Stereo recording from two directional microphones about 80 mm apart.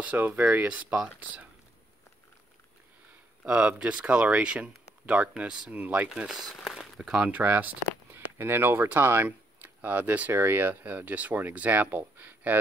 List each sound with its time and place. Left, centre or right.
0.0 s speech: centre
3.4 s speech: centre